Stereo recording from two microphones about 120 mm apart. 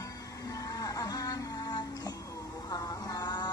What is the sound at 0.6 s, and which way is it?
Music, 30° left (ahead or behind).